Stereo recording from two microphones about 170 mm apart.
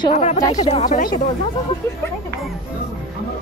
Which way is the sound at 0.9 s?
50° left (ahead or behind).